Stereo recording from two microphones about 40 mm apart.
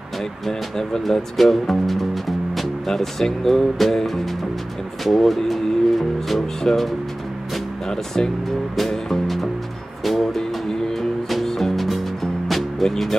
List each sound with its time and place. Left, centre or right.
0.5 s speech: centre
7.9 s speech: centre
8.7 s music: centre